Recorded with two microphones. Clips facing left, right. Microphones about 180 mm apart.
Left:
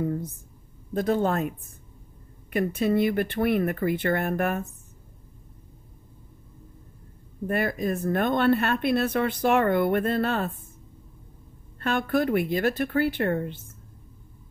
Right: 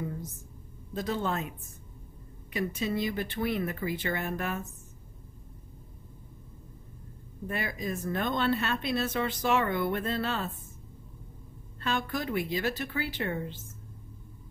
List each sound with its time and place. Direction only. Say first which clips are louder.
0.0 s a sound: left 9 dB; 55° left (ahead or behind)
0.9 s speech: left 7 dB; 50° left (ahead or behind)
2.5 s speech: left 7 dB; 55° left (ahead or behind)
7.4 s speech: left 8 dB; 55° left (ahead or behind)
11.8 s speech: left 8 dB; 55° left (ahead or behind)